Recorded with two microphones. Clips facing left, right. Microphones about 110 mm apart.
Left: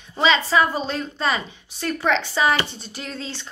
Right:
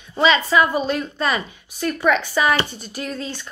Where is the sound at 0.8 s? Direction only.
30° left (ahead or behind).